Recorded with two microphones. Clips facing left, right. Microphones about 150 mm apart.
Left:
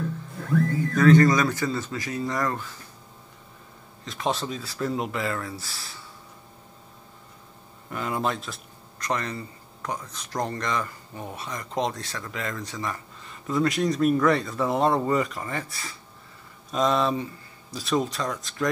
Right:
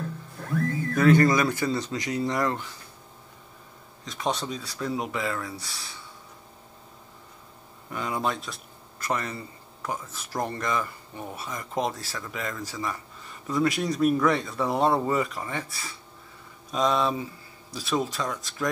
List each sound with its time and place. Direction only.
0.9 s speech: 10° right (ahead or behind)
4.0 s speech: centre (ahead or behind)
7.9 s speech: centre (ahead or behind)